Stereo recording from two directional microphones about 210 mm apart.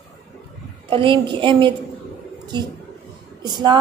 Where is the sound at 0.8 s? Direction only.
25° right (ahead or behind).